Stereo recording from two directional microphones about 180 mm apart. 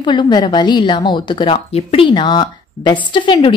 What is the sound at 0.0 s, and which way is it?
Speech, 25° left (ahead or behind).